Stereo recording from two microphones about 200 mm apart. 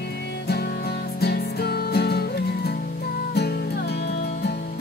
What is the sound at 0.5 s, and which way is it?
Music, 50° left (ahead or behind).